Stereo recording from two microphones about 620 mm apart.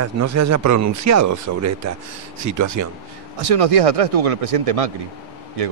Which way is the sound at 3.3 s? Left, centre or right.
Right.